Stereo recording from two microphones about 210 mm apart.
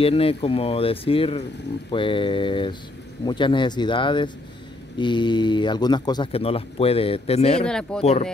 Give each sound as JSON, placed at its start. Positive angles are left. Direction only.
{"t": 0.0, "sound": "speech", "side_deg": 25}
{"t": 7.6, "sound": "speech", "side_deg": 5}
{"t": 8.0, "sound": "speech", "side_deg": 30}